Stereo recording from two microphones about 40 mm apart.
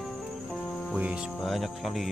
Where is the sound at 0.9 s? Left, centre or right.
Right.